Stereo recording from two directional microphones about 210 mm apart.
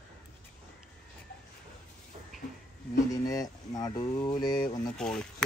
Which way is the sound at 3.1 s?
15° left (ahead or behind).